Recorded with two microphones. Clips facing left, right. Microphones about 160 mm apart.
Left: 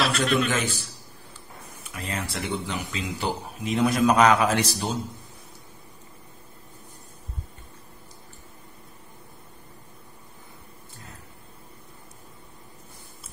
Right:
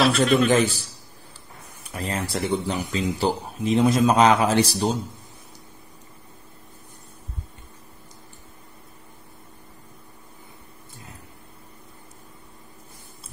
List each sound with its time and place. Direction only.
0.0 s a man's voice: centre (ahead or behind)
1.9 s speech: 35° right (ahead or behind)